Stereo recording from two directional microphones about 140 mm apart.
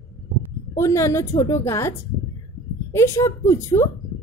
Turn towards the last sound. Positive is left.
turn(degrees=20)  # may be behind; listen again after turning